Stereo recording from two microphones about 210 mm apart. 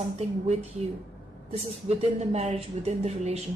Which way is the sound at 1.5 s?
30° right (ahead or behind).